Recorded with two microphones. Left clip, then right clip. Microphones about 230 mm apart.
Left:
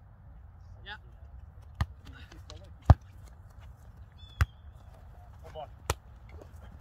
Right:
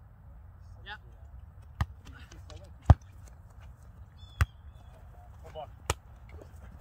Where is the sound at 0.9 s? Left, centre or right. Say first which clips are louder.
Even; centre.